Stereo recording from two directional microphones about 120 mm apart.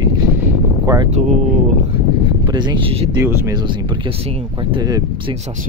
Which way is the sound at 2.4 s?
40° right (ahead or behind).